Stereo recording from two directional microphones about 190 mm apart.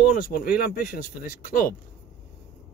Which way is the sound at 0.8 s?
50° left (ahead or behind).